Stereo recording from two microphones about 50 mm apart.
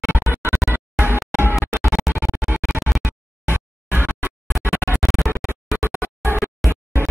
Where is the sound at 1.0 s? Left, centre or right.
Right.